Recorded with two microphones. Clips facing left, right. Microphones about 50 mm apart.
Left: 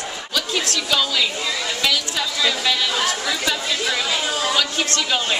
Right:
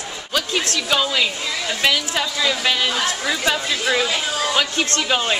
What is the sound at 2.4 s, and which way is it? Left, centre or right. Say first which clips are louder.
Speech: even; right.